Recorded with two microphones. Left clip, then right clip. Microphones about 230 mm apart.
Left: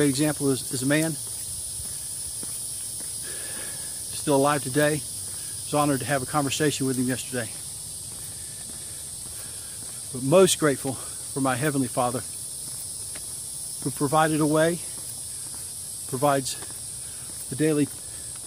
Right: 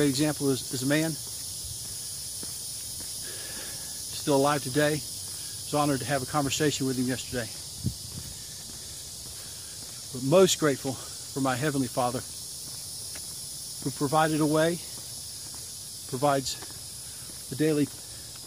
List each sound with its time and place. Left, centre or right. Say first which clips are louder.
0.0 s speech: left 2 dB; centre
4.2 s speech: left 2 dB; centre
10.3 s speech: left 3 dB; centre
13.8 s speech: left 3 dB; centre
16.1 s speech: left 3 dB; centre
17.6 s speech: left 2 dB; centre